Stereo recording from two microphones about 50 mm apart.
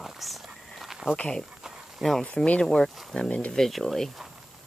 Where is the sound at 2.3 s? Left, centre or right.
Left.